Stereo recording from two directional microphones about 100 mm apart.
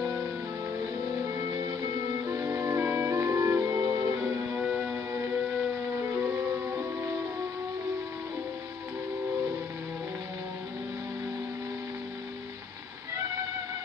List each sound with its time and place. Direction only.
1.3 s music: 30° right (ahead or behind)
4.2 s music: 20° right (ahead or behind)